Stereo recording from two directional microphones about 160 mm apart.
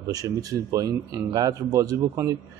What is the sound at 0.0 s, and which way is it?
Speech, 20° right (ahead or behind).